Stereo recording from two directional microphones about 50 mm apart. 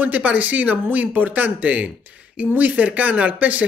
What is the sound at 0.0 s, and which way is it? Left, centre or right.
Speech, right.